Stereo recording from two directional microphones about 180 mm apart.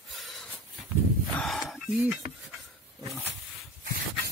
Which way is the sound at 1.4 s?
Centre (ahead or behind).